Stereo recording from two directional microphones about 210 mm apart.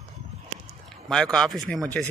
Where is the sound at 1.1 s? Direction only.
5° left (ahead or behind).